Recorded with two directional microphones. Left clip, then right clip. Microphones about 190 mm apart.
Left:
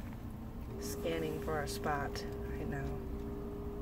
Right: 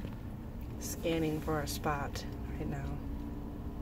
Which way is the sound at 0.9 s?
15° right (ahead or behind).